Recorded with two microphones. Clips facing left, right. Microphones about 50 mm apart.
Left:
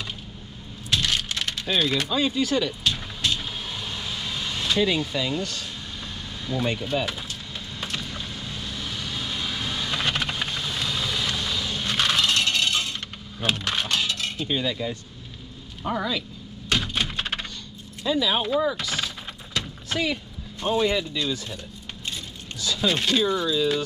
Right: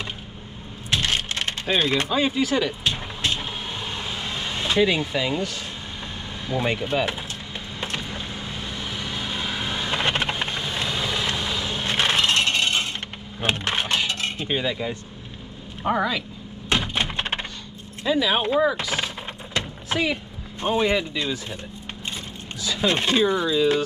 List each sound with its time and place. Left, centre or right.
0.8 s vehicle: right
2.1 s vehicle: centre
6.4 s speech: right
7.8 s vehicle: right
13.4 s coin: right
15.8 s speech: right
16.1 s thunk: right
18.0 s speech: right
19.6 s a sound: right
19.9 s speech: centre
22.6 s speech: right